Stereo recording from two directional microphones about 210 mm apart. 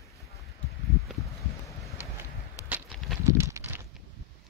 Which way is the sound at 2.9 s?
5° left (ahead or behind).